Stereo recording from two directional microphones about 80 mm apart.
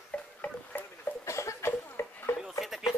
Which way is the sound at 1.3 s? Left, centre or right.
Left.